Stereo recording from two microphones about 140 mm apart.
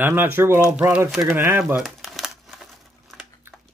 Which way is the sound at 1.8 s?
Centre (ahead or behind).